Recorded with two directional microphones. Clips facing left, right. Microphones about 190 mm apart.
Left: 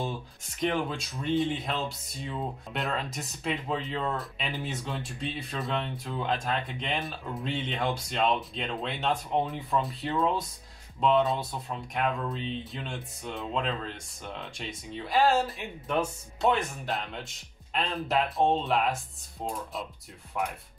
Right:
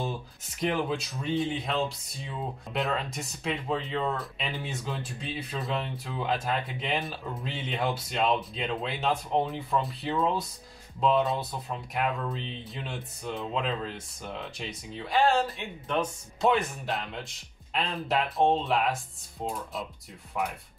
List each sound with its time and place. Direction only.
0.6 s speech: centre (ahead or behind)
20.4 s speech: centre (ahead or behind)